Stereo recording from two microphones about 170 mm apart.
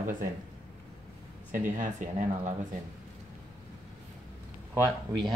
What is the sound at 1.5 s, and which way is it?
Speech, 50° right (ahead or behind).